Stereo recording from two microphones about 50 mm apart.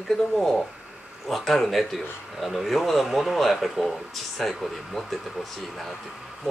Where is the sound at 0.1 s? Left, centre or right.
Centre.